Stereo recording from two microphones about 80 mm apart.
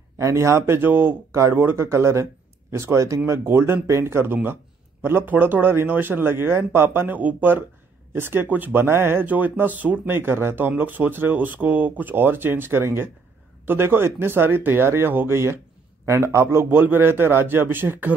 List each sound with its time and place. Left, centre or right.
0.2 s speech: right